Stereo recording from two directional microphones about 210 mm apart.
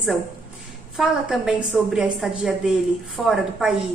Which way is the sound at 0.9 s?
Centre (ahead or behind).